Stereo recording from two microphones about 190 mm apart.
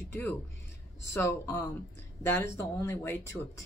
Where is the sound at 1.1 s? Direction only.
15° left (ahead or behind).